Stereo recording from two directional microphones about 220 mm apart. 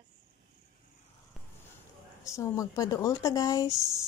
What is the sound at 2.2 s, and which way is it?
Speech, 15° left (ahead or behind).